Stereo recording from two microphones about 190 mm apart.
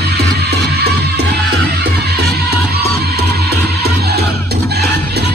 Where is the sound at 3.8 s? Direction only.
55° right (ahead or behind).